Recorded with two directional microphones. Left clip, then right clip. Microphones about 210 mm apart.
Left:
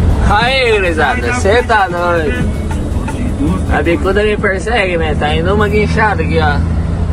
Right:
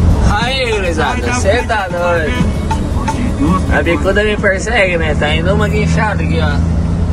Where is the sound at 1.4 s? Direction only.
Centre (ahead or behind).